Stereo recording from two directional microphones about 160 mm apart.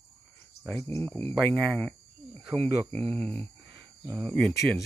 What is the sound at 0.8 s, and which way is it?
Speech, 15° left (ahead or behind).